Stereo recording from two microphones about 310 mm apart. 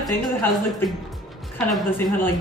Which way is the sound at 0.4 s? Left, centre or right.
Centre.